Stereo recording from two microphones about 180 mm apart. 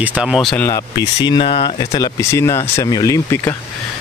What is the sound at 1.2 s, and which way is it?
Speech, 25° left (ahead or behind).